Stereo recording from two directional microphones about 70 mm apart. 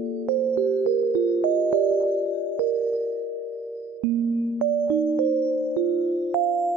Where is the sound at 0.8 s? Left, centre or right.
Left.